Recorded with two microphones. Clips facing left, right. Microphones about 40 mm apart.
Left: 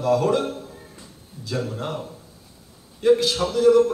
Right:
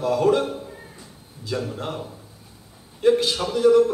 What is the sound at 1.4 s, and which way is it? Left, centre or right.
Speech, centre.